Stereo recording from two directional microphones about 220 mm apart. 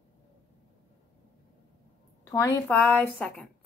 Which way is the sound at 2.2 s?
15° left (ahead or behind).